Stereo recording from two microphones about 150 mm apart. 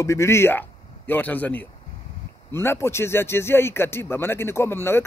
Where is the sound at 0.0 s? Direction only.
20° left (ahead or behind).